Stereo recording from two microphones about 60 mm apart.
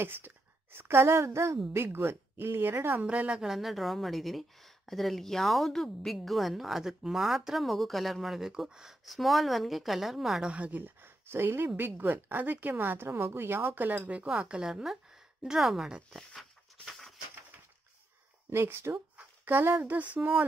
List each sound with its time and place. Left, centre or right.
0.0 s a woman's voice: right
1.8 s speech: right
3.0 s speech: right
3.4 s speech: centre
10.4 s speech: right
10.8 s speech: right
14.4 s speech: centre
16.3 s a sound: centre
18.5 s speech: right